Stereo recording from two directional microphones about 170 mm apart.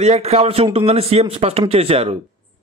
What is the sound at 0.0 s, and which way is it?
A man's voice, 40° right (ahead or behind).